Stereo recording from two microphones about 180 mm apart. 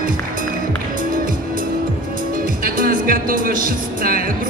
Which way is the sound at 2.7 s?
55° right (ahead or behind).